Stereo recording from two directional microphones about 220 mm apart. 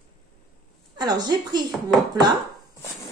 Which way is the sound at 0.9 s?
20° right (ahead or behind).